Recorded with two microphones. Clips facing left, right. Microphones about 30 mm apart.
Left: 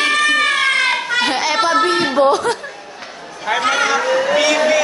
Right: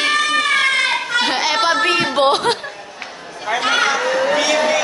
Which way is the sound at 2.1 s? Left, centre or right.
Right.